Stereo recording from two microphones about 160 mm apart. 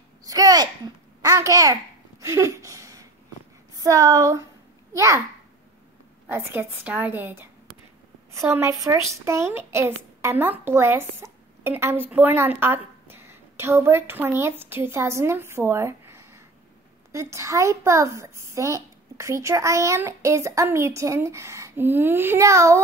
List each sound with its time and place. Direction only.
0.2 s a child's voice: 20° right (ahead or behind)
6.2 s a woman's voice: 15° right (ahead or behind)